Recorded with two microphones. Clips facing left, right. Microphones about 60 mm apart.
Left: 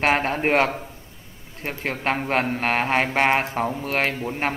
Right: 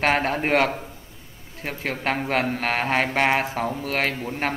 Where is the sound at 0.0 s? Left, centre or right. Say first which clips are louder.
Left 1 dB; centre.